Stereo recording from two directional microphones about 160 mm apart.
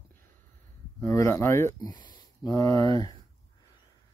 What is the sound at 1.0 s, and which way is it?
Speech, 15° left (ahead or behind).